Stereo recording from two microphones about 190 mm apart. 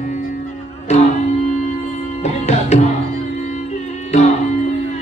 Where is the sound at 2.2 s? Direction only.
35° left (ahead or behind).